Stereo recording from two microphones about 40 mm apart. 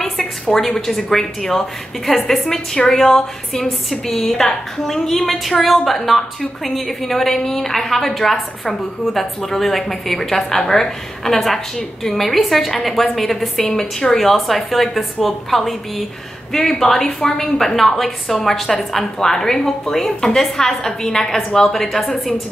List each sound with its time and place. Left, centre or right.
0.0 s a sound: centre
0.6 s a woman's voice: centre
17.0 s a woman's voice: centre